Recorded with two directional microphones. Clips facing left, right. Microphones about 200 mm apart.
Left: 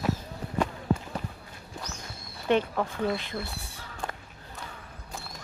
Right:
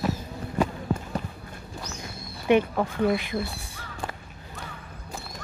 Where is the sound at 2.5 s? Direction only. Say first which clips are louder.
Right 4 dB; 10° right (ahead or behind).